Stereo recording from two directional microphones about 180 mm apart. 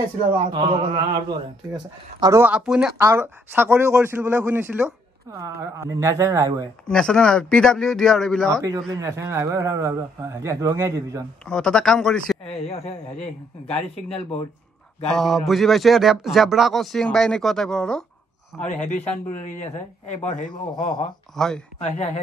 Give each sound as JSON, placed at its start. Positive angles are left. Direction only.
{"t": 0.5, "sound": "a man's voice", "side_deg": -25}
{"t": 3.0, "sound": "a man's voice", "side_deg": -15}
{"t": 6.9, "sound": "speech", "side_deg": 5}
{"t": 8.6, "sound": "a man's voice", "side_deg": -15}
{"t": 11.4, "sound": "speech", "side_deg": 5}
{"t": 15.0, "sound": "speech", "side_deg": 0}
{"t": 18.9, "sound": "a man's voice", "side_deg": 45}
{"t": 20.5, "sound": "a man's voice", "side_deg": 25}
{"t": 21.4, "sound": "speech", "side_deg": 0}
{"t": 21.7, "sound": "speech", "side_deg": 35}